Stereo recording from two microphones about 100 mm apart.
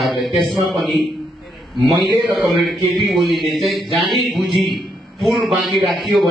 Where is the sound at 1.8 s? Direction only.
40° right (ahead or behind).